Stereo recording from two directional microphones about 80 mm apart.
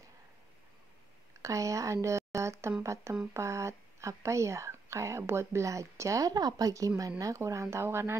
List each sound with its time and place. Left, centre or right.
1.4 s speech: right